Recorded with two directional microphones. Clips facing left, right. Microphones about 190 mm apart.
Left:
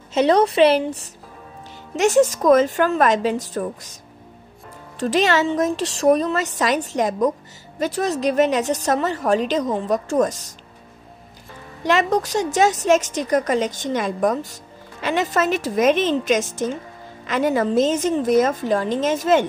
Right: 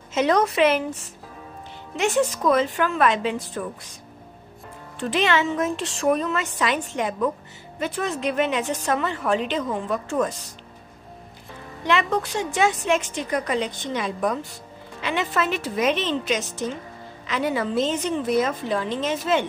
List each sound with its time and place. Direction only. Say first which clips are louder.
0.1 s a woman's voice: left 4 dB; 30° left (ahead or behind)
4.9 s a woman's voice: left 4 dB; 40° left (ahead or behind)
11.8 s a woman's voice: left 4 dB; 40° left (ahead or behind)